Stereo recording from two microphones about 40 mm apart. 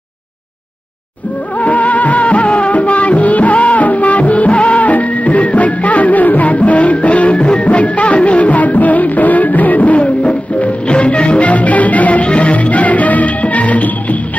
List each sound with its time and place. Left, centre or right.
1.6 s music: left